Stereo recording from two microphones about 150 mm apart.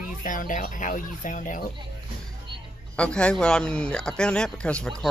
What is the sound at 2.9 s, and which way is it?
Speech, 5° left (ahead or behind).